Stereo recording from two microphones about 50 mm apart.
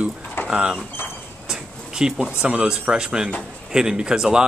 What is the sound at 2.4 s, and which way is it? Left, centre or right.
Speech, centre.